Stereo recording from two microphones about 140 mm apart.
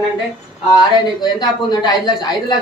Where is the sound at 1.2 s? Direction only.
30° left (ahead or behind).